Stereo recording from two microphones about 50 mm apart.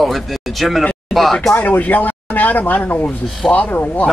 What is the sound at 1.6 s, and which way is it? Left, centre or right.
Speech, left.